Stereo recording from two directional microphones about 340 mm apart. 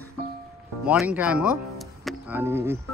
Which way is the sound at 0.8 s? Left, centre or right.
Centre.